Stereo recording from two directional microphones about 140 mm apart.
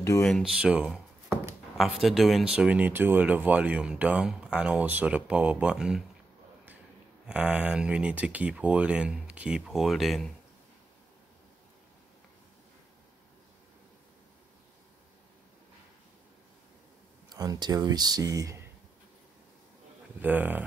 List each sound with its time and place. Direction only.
0.2 s speech: centre (ahead or behind)
7.2 s speech: 10° right (ahead or behind)
17.3 s speech: 30° right (ahead or behind)
20.2 s speech: 10° right (ahead or behind)